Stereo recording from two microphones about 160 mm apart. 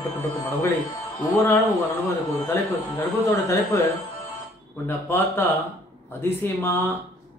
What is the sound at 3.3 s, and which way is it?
Speech, 15° left (ahead or behind).